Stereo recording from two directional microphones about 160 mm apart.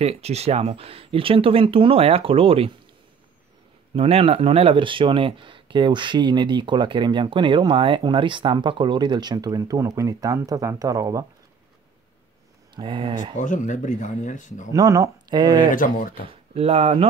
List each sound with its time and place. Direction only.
0.0 s speech: 40° right (ahead or behind)
3.9 s speech: 35° right (ahead or behind); by 11.2 s 20° right (ahead or behind)
12.7 s speech: 30° right (ahead or behind)
13.4 s speech: 50° left (ahead or behind)
14.7 s speech: 20° right (ahead or behind)
15.7 s speech: 60° left (ahead or behind)
16.3 s speech: 40° right (ahead or behind)